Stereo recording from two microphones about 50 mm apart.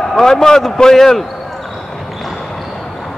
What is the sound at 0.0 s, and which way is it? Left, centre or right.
A man's voice, centre.